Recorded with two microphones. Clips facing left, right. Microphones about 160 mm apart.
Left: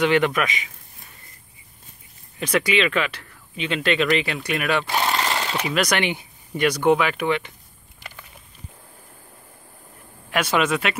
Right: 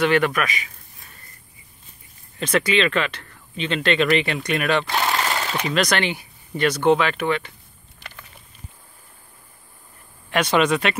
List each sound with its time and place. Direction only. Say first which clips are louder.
0.0 s a man's voice: even; 15° left (ahead or behind)
2.3 s speech: right 1 dB; 10° left (ahead or behind)
10.3 s speech: right 2 dB; 5° left (ahead or behind)